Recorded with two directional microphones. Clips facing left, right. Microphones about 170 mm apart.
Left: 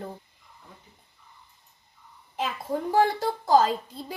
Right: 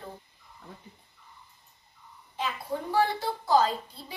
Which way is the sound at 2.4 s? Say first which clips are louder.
Left 3 dB; 45° left (ahead or behind).